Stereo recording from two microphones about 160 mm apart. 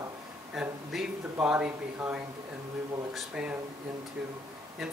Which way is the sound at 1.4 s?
5° right (ahead or behind).